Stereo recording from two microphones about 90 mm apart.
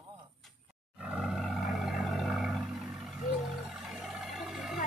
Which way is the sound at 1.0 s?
5° right (ahead or behind).